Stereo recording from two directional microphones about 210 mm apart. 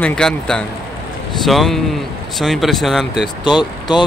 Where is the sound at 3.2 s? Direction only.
20° left (ahead or behind).